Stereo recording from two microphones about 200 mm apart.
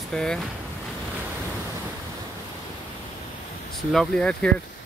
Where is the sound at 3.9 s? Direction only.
5° left (ahead or behind).